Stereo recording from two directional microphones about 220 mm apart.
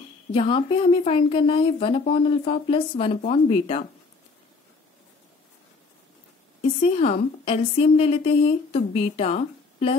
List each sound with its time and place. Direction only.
0.3 s a woman's voice: 25° left (ahead or behind)
6.8 s a woman's voice: 25° left (ahead or behind)